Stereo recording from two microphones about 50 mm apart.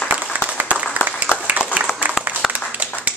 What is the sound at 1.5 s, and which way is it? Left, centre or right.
Applause, right.